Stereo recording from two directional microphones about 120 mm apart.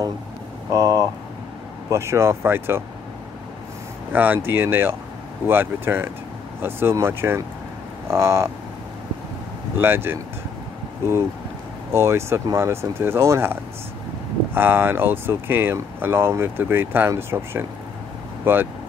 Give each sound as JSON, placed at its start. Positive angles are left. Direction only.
{"t": 0.7, "sound": "speech", "side_deg": -30}
{"t": 4.1, "sound": "speech", "side_deg": -15}
{"t": 9.8, "sound": "speech", "side_deg": -20}